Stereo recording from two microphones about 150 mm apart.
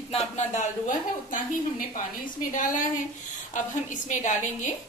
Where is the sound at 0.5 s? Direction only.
55° left (ahead or behind).